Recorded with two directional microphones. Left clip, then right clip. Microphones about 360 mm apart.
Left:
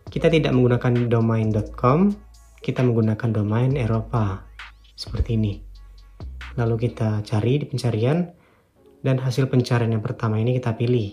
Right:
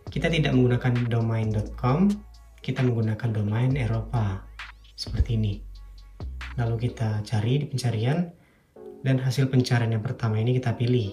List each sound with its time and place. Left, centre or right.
0.0 s speech: centre
6.2 s music: centre
6.5 s speech: centre